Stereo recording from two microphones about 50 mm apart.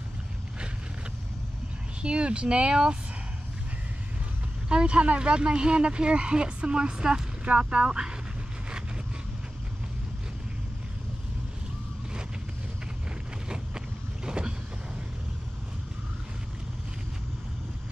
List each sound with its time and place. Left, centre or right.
2.0 s speech: centre
4.6 s speech: centre
13.5 s vehicle: centre